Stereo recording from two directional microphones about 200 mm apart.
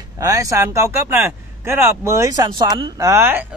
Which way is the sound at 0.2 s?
15° right (ahead or behind).